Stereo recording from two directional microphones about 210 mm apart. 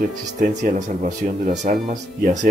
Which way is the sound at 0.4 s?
35° right (ahead or behind).